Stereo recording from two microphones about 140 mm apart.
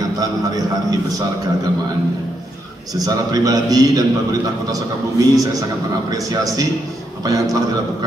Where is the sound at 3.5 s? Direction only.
25° right (ahead or behind).